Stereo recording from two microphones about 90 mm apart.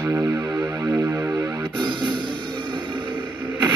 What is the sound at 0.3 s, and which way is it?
Music, 40° right (ahead or behind).